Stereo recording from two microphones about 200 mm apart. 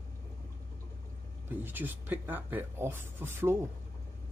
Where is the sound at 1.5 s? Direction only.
10° right (ahead or behind).